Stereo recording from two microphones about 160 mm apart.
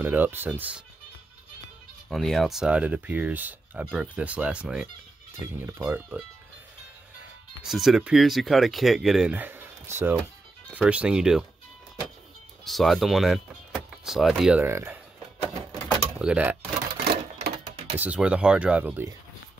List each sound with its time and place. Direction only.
0.0 s speech: 10° right (ahead or behind)
2.0 s speech: centre (ahead or behind)
7.6 s speech: centre (ahead or behind)
12.6 s speech: centre (ahead or behind)
16.2 s speech: 5° right (ahead or behind)
16.9 s cash register: 80° right
17.9 s speech: 10° right (ahead or behind)